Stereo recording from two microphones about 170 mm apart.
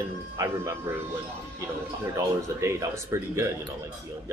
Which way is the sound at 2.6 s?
15° right (ahead or behind).